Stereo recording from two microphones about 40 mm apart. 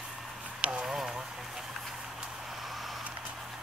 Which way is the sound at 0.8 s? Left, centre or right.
Centre.